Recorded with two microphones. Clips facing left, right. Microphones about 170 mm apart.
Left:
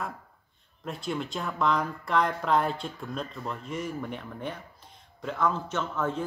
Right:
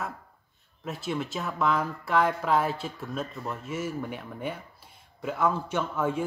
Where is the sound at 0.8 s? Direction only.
5° right (ahead or behind).